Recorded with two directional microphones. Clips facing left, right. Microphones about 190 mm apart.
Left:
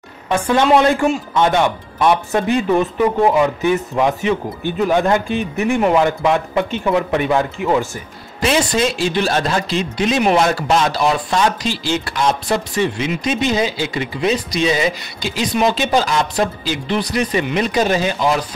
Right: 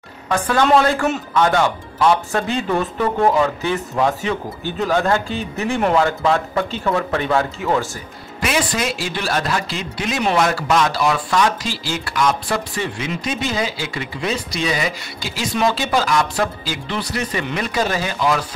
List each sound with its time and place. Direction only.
0.3 s speech: 20° left (ahead or behind)
8.4 s speech: 30° left (ahead or behind)